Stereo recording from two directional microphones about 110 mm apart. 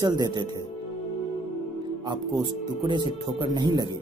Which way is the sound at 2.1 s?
45° right (ahead or behind).